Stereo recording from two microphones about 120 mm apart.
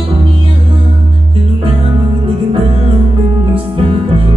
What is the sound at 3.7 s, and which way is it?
Music, 50° right (ahead or behind).